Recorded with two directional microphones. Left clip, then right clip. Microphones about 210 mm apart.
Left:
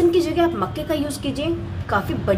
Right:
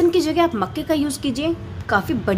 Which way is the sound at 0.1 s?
45° right (ahead or behind).